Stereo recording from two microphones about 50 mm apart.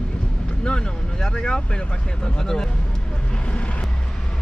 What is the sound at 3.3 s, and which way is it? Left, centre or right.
Vehicle, left.